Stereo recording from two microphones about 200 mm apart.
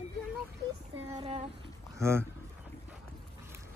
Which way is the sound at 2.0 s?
15° right (ahead or behind).